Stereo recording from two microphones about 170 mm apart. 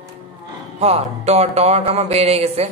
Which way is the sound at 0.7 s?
40° right (ahead or behind).